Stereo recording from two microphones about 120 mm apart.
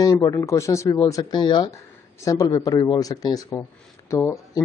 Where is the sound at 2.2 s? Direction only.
25° left (ahead or behind).